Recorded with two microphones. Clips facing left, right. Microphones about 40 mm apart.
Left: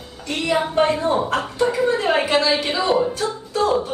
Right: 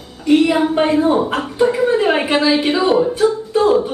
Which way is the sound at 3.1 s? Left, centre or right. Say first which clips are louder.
Right 9 dB; centre.